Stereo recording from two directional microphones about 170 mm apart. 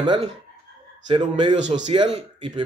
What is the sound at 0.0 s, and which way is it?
Speech, 30° right (ahead or behind).